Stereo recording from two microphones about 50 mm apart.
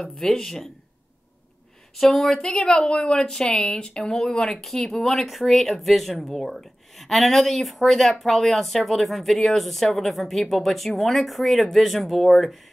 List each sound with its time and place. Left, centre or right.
0.0 s speech: centre
2.0 s speech: centre
2.4 s speech: centre
5.0 s speech: centre